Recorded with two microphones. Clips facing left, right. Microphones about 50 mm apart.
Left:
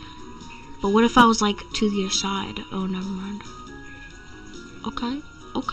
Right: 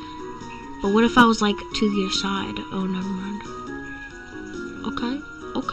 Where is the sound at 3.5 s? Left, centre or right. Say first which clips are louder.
Right 7 dB; right.